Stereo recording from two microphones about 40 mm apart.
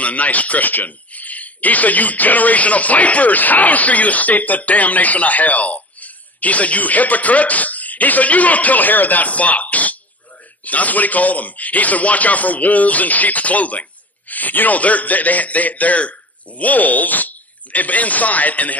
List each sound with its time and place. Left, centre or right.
0.0 s speech: left